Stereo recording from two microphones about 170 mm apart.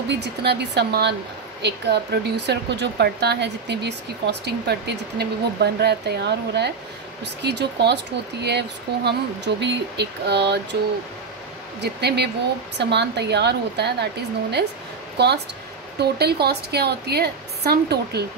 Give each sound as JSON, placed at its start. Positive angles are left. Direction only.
{"t": 0.1, "sound": "speech", "side_deg": -80}
{"t": 11.8, "sound": "speech", "side_deg": -80}
{"t": 15.1, "sound": "a woman's voice", "side_deg": -75}